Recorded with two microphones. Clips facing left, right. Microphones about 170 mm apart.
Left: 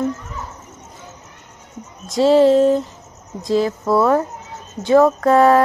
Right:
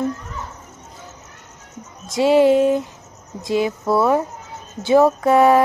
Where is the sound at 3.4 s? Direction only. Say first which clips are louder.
Left 2 dB; centre (ahead or behind).